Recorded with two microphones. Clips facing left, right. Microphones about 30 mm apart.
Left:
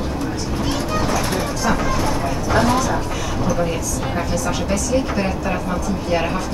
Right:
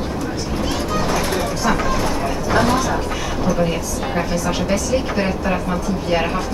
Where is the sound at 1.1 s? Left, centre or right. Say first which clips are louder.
Right 1 dB; centre.